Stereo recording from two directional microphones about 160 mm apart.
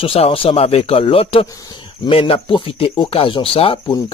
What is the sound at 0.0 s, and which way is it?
Speech, 35° left (ahead or behind).